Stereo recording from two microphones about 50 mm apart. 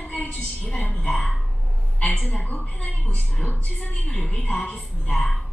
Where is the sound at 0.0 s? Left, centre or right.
Left.